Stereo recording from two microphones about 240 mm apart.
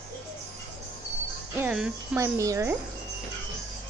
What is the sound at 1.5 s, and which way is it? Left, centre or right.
Speech, centre.